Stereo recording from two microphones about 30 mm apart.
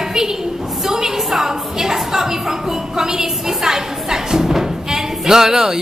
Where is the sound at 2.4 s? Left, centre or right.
Centre.